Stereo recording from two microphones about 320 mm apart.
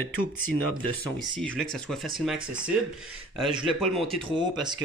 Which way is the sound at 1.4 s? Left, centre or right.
Centre.